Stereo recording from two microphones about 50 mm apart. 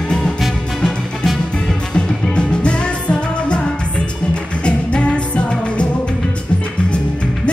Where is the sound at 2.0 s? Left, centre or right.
Centre.